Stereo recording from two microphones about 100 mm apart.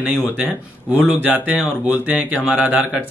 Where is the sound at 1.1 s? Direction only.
15° right (ahead or behind).